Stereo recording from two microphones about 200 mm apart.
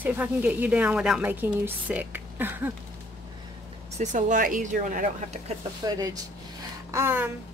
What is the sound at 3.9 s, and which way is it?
Speech, 40° right (ahead or behind).